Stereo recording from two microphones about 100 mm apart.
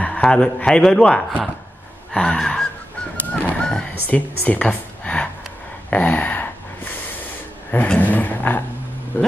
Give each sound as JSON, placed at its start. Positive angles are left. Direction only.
{"t": 0.0, "sound": "a man's voice", "side_deg": 10}
{"t": 2.1, "sound": "gasp", "side_deg": 10}
{"t": 3.4, "sound": "fowl", "side_deg": 10}
{"t": 4.4, "sound": "a sound", "side_deg": 15}
{"t": 7.7, "sound": "a man's voice", "side_deg": 15}